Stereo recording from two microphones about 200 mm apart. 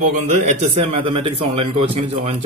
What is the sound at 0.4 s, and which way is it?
A man's voice, 30° right (ahead or behind).